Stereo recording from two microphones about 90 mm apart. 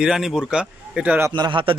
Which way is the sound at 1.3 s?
60° right (ahead or behind).